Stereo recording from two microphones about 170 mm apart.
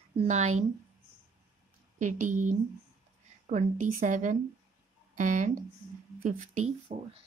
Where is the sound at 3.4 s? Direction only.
45° right (ahead or behind).